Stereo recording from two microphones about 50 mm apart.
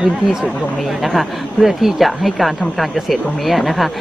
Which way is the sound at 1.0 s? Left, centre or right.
Centre.